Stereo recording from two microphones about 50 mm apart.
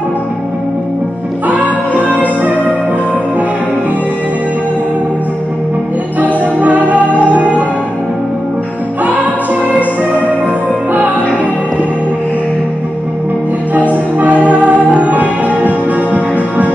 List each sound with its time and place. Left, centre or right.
1.5 s music: right
6.1 s music: right
9.0 s music: right
14.1 s music: right